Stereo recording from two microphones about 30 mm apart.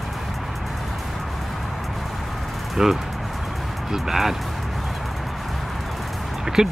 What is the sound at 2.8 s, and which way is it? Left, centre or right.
Speech, centre.